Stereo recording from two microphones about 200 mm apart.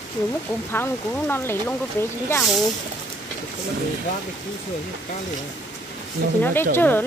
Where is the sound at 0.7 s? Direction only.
10° left (ahead or behind).